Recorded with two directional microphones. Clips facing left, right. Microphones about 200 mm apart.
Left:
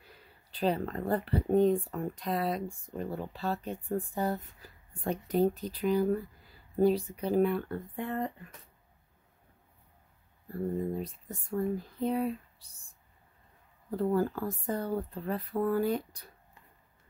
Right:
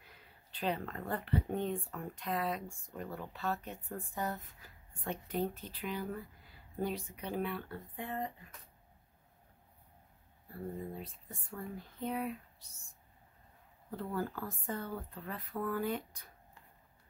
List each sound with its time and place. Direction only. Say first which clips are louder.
0.0 s speech: left 4 dB; 35° left (ahead or behind); by 8.3 s 55° left (ahead or behind)
10.9 s speech: left 10 dB; 40° left (ahead or behind)